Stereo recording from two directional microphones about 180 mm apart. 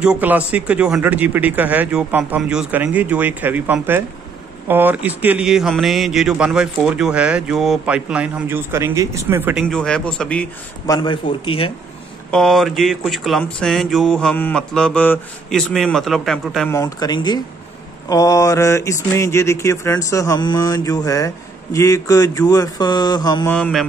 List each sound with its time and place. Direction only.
0.0 s a man's voice: 10° right (ahead or behind)
9.7 s a man's voice: 5° left (ahead or behind)
10.9 s speech: 25° left (ahead or behind)
12.3 s a man's voice: centre (ahead or behind)
16.7 s speech: 20° left (ahead or behind)
18.0 s mantra: 20° left (ahead or behind)
21.7 s speech: 15° left (ahead or behind)
23.5 s a man's voice: 5° left (ahead or behind)